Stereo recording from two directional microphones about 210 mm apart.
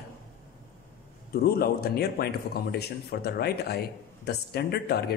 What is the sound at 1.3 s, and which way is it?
Speech, 45° left (ahead or behind).